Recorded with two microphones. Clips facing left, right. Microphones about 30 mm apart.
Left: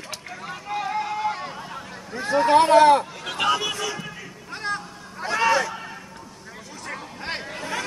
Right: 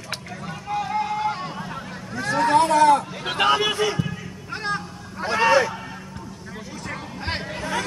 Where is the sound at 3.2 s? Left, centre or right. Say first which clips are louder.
Right 3 dB; right.